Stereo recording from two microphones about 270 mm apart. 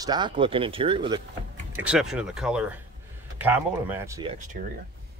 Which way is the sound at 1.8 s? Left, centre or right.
Centre.